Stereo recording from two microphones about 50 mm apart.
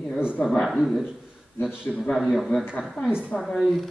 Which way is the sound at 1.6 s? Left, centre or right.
Centre.